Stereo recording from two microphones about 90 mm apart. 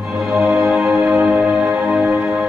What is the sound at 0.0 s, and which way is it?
Music, 5° right (ahead or behind).